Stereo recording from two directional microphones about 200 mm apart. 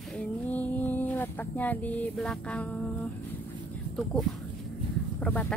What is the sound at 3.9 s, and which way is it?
A woman's voice, 5° left (ahead or behind).